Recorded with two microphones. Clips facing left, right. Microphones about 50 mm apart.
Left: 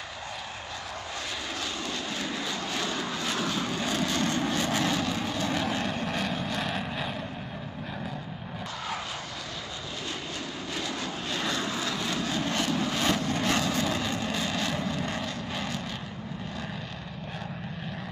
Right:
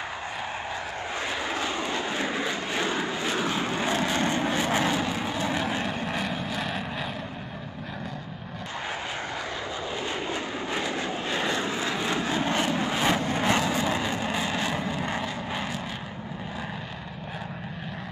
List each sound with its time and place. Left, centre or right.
1.6 s vehicle: right; by 7.1 s centre
10.7 s vehicle: right